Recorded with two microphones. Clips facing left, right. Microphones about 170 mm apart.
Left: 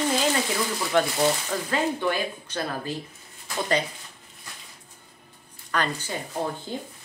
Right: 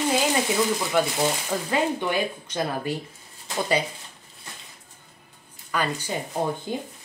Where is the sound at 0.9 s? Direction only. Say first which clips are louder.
Left 3 dB; 10° right (ahead or behind).